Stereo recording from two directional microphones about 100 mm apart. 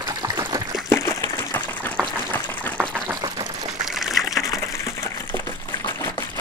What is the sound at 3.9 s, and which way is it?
Water, centre (ahead or behind).